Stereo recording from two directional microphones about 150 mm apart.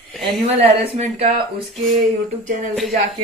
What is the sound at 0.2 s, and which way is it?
A woman's voice, 40° right (ahead or behind).